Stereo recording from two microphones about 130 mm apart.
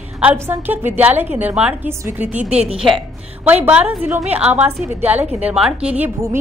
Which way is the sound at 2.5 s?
50° right (ahead or behind).